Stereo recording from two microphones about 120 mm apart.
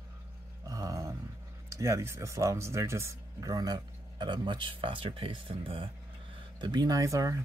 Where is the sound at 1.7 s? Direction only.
25° right (ahead or behind); by 5.9 s 50° right (ahead or behind).